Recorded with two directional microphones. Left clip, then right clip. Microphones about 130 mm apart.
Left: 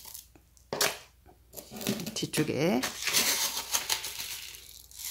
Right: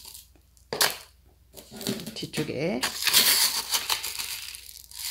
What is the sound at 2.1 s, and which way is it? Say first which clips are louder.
Speech: left 3 dB; 40° left (ahead or behind).